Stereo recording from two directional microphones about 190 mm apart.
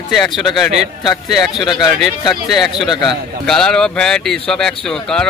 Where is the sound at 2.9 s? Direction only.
20° left (ahead or behind).